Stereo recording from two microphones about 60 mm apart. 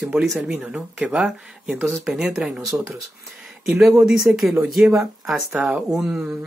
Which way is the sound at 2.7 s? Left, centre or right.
Right.